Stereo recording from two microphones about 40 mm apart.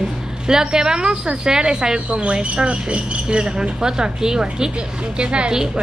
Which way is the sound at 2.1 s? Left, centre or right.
Right.